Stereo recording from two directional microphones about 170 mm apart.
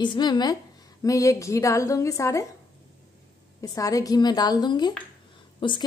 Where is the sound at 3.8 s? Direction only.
20° left (ahead or behind).